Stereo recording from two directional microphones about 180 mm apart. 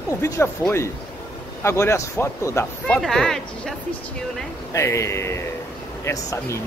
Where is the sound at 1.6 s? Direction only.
15° left (ahead or behind).